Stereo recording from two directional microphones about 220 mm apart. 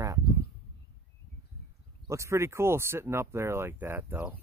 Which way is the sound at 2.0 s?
15° right (ahead or behind).